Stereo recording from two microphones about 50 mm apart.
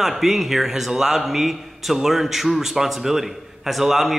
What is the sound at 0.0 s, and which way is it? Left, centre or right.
A man's voice, centre.